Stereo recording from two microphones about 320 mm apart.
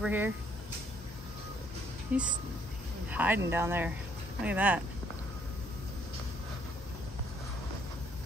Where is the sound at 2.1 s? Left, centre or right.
Centre.